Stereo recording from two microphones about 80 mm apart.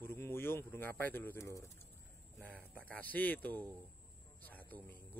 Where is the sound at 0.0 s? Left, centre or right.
Left.